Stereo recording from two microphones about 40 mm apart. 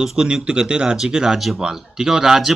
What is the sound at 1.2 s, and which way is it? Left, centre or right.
Speech, centre.